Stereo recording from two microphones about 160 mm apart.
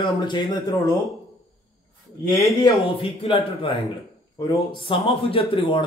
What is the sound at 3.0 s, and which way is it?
A man's voice, 35° left (ahead or behind).